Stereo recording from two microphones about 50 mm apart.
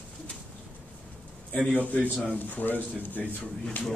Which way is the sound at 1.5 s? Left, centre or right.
Left.